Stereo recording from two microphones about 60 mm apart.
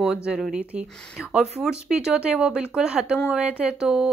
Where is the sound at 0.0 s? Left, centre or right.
Centre.